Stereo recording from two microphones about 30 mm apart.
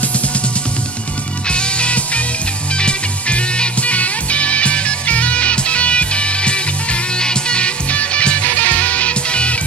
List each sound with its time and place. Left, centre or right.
1.5 s music: left
3.8 s music: left
7.9 s music: left
8.5 s music: left